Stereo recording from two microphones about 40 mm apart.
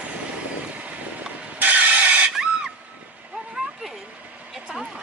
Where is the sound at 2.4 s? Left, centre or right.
Centre.